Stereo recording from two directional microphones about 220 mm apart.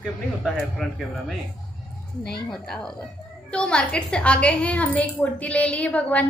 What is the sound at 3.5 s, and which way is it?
A woman's voice, 5° left (ahead or behind).